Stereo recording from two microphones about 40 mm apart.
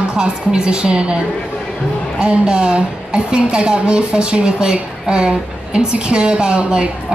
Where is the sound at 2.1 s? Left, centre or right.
Right.